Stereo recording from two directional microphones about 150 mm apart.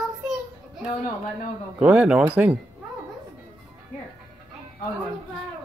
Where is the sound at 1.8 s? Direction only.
10° right (ahead or behind).